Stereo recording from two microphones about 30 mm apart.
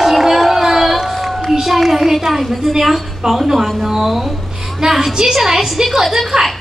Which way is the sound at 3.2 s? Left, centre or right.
Right.